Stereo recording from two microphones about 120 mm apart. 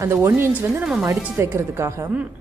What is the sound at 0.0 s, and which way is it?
A woman's voice, 20° right (ahead or behind).